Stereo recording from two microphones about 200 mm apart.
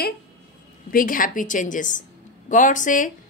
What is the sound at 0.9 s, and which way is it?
A woman's voice, 45° left (ahead or behind).